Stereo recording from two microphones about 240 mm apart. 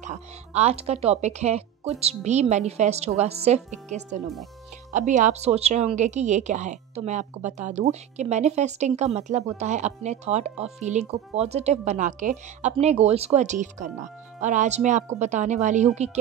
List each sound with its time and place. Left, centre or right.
0.0 s speech: right